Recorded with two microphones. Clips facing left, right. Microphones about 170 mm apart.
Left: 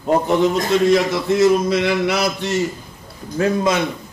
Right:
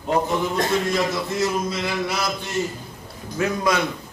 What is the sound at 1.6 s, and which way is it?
Mantra, 75° left (ahead or behind).